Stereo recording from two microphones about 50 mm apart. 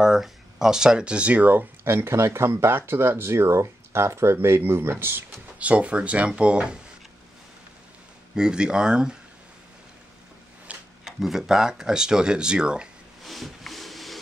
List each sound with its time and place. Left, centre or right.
0.0 s speech: centre; by 1.7 s right
1.9 s speech: right
5.6 s speech: right
8.4 s speech: centre
10.7 s a sound: right
11.1 s speech: centre
13.2 s a sound: centre